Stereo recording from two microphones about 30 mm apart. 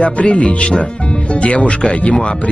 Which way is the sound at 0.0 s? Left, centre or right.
Left.